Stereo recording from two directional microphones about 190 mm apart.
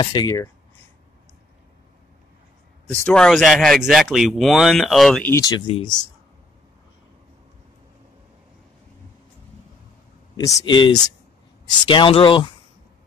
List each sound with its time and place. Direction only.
0.0 s speech: 20° left (ahead or behind)
2.9 s speech: 5° left (ahead or behind)
5.3 s speech: 20° left (ahead or behind)
10.7 s speech: 25° left (ahead or behind)